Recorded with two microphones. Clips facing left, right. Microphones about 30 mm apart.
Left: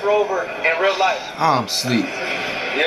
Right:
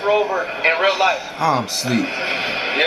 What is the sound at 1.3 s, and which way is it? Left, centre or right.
Speech, centre.